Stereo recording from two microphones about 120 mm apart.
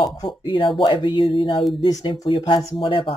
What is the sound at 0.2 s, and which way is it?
Speech, 40° left (ahead or behind).